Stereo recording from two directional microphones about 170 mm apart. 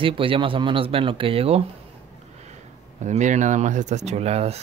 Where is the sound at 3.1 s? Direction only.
45° right (ahead or behind).